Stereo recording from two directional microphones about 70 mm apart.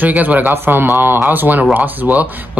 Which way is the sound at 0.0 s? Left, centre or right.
Right.